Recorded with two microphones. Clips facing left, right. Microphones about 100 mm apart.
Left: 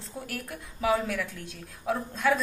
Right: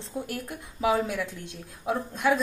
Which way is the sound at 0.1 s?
20° right (ahead or behind).